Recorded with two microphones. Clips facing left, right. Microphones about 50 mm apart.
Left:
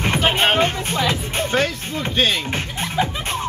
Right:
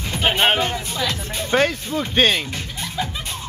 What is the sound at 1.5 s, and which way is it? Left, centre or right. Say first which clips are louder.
Speech: right 5 dB; right.